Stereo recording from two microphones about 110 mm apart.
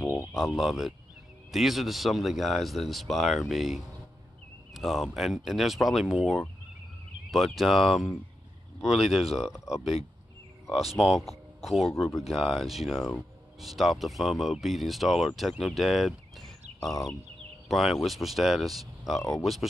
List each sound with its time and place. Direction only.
0.0 s a sound: 20° left (ahead or behind)
0.6 s speech: 5° right (ahead or behind)
11.0 s speech: 5° right (ahead or behind)
17.6 s speech: centre (ahead or behind)